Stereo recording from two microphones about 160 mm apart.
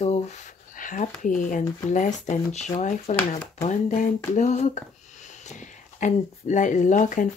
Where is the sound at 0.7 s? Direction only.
55° left (ahead or behind).